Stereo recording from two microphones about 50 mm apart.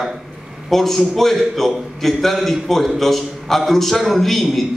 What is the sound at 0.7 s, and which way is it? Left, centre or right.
A man's voice, centre.